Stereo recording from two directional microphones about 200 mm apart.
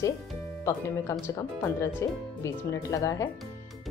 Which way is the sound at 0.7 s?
15° left (ahead or behind).